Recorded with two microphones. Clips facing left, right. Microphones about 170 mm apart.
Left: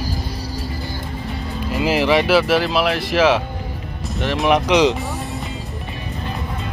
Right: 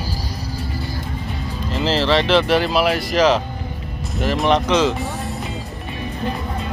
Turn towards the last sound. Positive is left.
turn(degrees=15)  # may be behind; listen again after turning